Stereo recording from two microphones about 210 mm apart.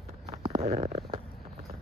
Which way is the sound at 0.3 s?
30° right (ahead or behind).